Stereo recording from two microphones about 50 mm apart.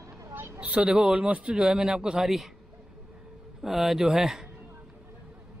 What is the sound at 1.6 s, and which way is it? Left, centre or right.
Speech, centre.